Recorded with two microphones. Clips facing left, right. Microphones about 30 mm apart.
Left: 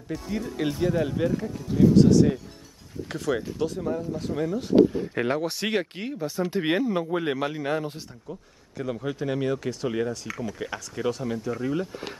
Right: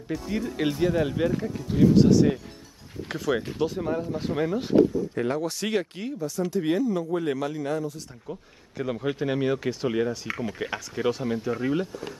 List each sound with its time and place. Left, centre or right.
0.1 s speech: centre
5.1 s speech: left
8.3 s speech: centre
10.2 s speech: right